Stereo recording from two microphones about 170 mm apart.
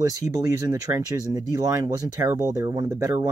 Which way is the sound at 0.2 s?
20° right (ahead or behind).